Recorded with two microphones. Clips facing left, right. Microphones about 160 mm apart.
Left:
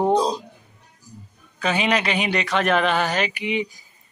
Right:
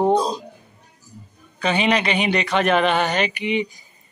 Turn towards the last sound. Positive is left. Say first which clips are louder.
# right 2 dB
turn(degrees=5)  # may be behind; listen again after turning